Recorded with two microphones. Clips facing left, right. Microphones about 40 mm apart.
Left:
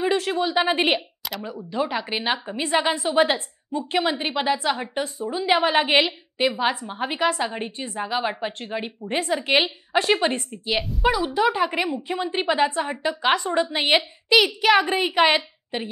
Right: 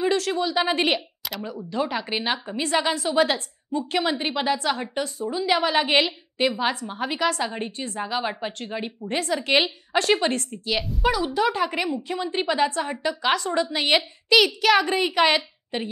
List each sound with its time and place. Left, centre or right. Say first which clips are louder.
0.0 s a woman's voice: left 1 dB; centre
1.7 s a woman's voice: left 1 dB; centre
3.7 s a woman's voice: left 1 dB; centre